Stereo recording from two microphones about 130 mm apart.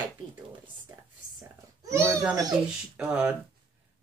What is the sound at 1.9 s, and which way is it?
Speech, 20° right (ahead or behind).